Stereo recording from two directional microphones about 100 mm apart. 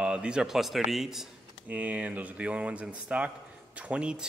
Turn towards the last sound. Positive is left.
turn(degrees=-10)  # may be behind; listen again after turning